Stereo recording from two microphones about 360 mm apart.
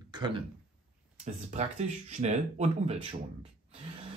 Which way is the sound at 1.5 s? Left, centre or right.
Centre.